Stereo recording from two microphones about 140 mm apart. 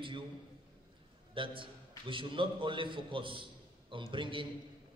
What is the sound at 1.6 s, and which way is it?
A man's voice, 35° right (ahead or behind).